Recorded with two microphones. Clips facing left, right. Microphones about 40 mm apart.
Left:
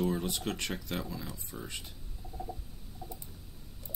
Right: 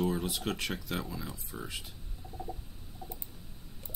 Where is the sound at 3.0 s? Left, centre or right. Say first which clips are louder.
Even; centre.